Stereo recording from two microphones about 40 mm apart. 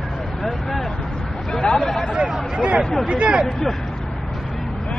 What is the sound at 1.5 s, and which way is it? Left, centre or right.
Speech, centre.